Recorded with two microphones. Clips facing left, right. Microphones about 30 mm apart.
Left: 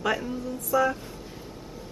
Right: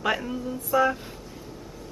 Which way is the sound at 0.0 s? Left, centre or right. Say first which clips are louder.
Right 1 dB; centre.